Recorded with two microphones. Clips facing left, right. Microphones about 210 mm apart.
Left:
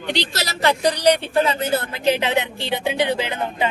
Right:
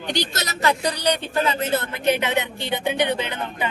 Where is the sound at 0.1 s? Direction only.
30° left (ahead or behind).